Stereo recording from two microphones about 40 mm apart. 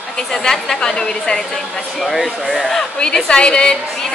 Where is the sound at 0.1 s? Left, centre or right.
Centre.